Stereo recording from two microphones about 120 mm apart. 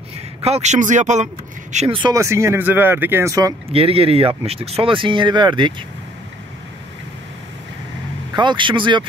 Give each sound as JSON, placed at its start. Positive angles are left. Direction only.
{"t": 0.4, "sound": "speech", "side_deg": -65}
{"t": 1.9, "sound": "speech", "side_deg": -40}
{"t": 2.1, "sound": "speech", "side_deg": -25}
{"t": 3.7, "sound": "speech", "side_deg": -50}
{"t": 8.4, "sound": "speech", "side_deg": -40}